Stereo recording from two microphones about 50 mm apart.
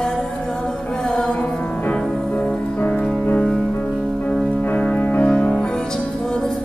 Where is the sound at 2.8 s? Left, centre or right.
Left.